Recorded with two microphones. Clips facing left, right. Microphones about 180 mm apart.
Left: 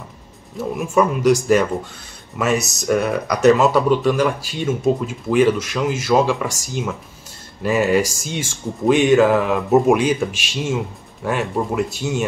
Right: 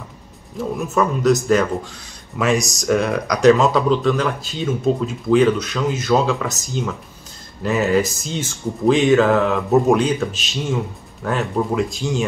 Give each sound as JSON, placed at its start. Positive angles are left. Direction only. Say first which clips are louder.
{"t": 0.9, "sound": "speech", "louder": "left 2 dB", "side_deg": 10}
{"t": 8.0, "sound": "speech", "louder": "even", "side_deg": 90}
{"t": 8.3, "sound": "speech", "louder": "right 1 dB", "side_deg": 10}